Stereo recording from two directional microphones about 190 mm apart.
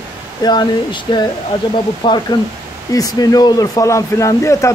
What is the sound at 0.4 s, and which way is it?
A man's voice, 25° left (ahead or behind).